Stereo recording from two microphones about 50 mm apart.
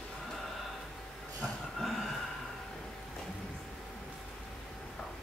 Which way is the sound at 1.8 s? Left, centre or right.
Centre.